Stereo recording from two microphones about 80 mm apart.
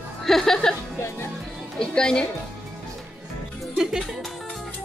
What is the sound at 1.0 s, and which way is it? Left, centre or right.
Music, left.